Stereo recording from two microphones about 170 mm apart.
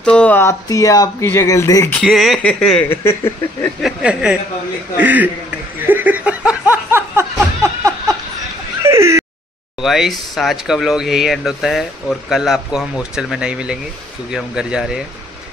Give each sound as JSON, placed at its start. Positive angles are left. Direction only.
{"t": 0.0, "sound": "speech", "side_deg": 5}
{"t": 2.0, "sound": "speech", "side_deg": 0}
{"t": 3.8, "sound": "a man's voice", "side_deg": -5}
{"t": 5.8, "sound": "laughter", "side_deg": -10}
{"t": 7.6, "sound": "a sound", "side_deg": -20}
{"t": 8.8, "sound": "whimper", "side_deg": -15}
{"t": 9.8, "sound": "speech", "side_deg": 0}